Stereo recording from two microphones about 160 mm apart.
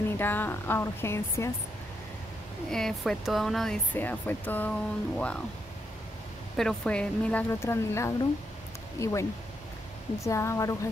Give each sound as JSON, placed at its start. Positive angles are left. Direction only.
{"t": 0.2, "sound": "a woman's voice", "side_deg": 10}
{"t": 2.7, "sound": "speech", "side_deg": 0}
{"t": 6.5, "sound": "a woman's voice", "side_deg": 5}